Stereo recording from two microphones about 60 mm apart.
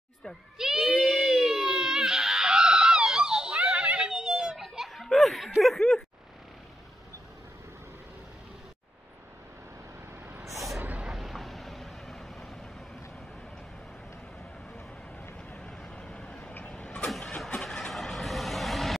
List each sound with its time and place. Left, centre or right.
0.6 s baby cry: centre
5.6 s chuckle: centre
10.8 s vehicle: right
11.1 s vehicle: centre
15.5 s vehicle: centre
17.6 s vehicle: centre